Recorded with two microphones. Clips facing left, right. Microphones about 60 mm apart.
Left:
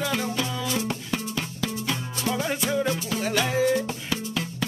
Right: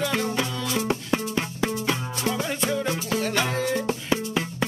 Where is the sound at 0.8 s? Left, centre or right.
Right.